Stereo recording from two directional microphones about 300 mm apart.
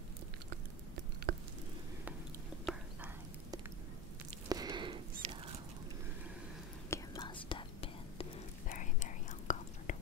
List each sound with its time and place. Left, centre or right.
1.3 s a sound: right
2.7 s whispering: centre
4.5 s whispering: centre
6.9 s whispering: centre